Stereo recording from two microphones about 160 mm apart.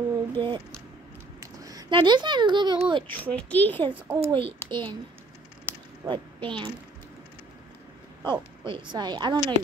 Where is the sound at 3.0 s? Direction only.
10° left (ahead or behind).